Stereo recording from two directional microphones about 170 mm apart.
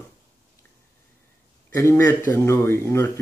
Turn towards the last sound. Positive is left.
turn(degrees=15)  # may be behind; listen again after turning